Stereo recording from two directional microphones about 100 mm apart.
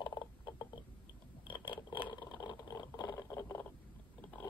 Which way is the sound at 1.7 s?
50° left (ahead or behind).